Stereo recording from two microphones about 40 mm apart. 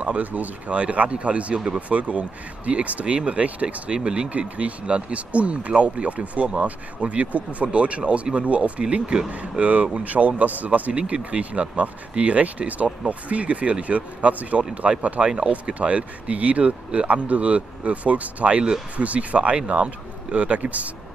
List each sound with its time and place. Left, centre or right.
0.0 s speech: right
4.3 s speech: right
9.3 s speech: right